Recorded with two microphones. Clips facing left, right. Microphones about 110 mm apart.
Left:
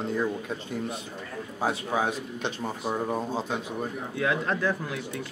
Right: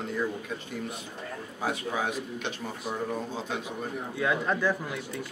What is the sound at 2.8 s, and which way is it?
Speech, 40° left (ahead or behind).